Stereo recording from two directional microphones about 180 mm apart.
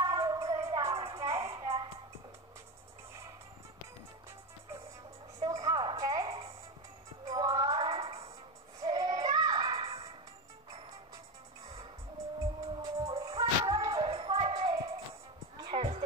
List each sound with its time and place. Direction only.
0.0 s music: 20° right (ahead or behind)
5.4 s music: 20° right (ahead or behind)
8.8 s music: 20° right (ahead or behind)
12.8 s music: 20° right (ahead or behind)